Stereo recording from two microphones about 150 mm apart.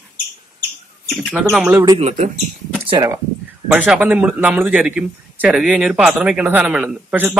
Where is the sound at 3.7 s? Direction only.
10° right (ahead or behind).